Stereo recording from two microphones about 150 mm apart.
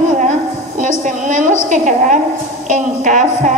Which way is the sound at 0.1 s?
60° right (ahead or behind).